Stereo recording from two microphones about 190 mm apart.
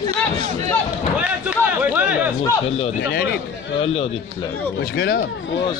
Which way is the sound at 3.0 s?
55° left (ahead or behind).